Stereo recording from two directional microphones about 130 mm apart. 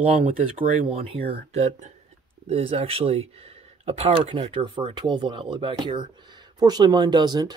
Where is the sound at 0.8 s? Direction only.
45° right (ahead or behind).